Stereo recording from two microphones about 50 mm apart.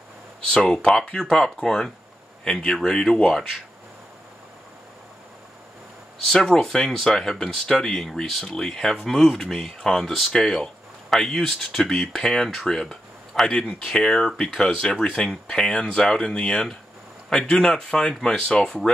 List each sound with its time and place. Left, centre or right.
0.7 s speech: centre
6.2 s speech: centre
12.6 s a sound: centre
13.5 s speech: centre